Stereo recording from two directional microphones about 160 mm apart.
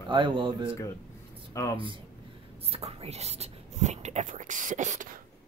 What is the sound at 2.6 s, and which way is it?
Speech, 40° right (ahead or behind).